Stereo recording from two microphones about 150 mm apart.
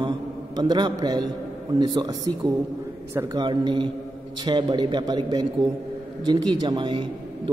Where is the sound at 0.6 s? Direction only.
30° right (ahead or behind).